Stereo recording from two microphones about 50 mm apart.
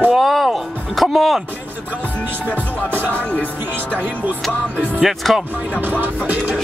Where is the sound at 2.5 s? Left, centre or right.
Right.